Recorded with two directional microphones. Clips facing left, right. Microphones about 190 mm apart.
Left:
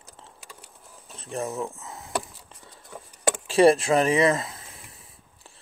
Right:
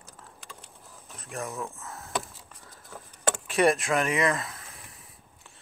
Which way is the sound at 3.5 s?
30° left (ahead or behind).